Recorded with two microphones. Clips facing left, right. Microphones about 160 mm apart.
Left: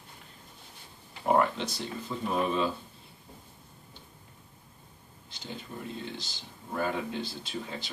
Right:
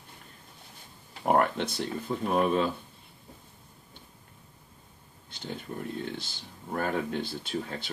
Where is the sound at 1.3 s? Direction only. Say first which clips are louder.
Right 1 dB; 55° right (ahead or behind).